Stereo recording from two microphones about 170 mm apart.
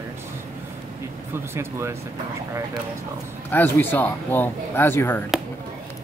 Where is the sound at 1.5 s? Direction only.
15° right (ahead or behind).